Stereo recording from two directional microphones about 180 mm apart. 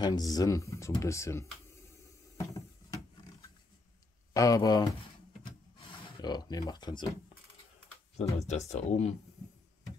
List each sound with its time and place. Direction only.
0.0 s speech: 20° left (ahead or behind)
2.3 s a sound: 20° left (ahead or behind)
4.3 s speech: 20° left (ahead or behind)
6.2 s speech: 25° left (ahead or behind)
8.2 s speech: 35° left (ahead or behind)